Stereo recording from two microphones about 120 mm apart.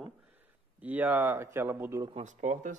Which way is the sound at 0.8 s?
15° right (ahead or behind).